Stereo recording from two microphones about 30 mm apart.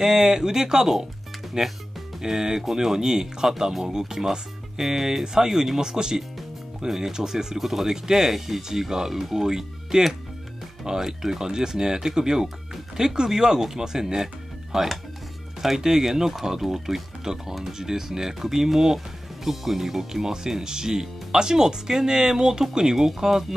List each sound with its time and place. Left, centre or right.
0.0 s speech: centre